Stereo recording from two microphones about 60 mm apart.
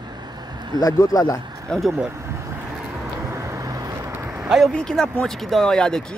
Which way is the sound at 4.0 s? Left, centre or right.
Right.